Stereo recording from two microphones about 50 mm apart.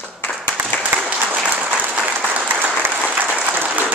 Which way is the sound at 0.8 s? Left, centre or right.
Right.